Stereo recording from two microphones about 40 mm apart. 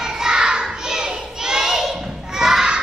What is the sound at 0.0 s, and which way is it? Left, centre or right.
Child singing, centre.